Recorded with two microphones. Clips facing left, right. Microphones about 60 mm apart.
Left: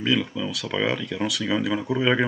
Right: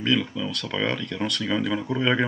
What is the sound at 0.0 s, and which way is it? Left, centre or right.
Speech, centre.